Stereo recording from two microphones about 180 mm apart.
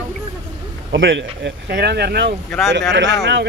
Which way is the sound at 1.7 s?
65° right (ahead or behind).